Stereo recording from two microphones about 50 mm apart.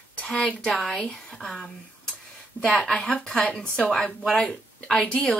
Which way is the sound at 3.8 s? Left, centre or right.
Centre.